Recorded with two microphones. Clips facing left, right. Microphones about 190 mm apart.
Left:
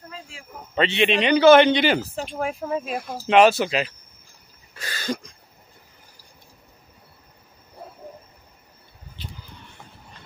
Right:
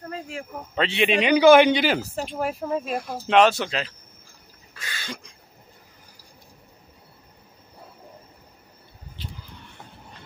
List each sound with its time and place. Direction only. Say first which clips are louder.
0.1 s a sound: right 10 dB; 60° right (ahead or behind)
0.7 s a man's voice: left 1 dB; centre (ahead or behind)
4.7 s cough: left 8 dB; 40° left (ahead or behind)